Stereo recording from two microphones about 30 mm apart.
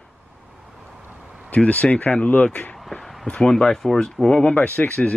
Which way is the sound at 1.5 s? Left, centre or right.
Left.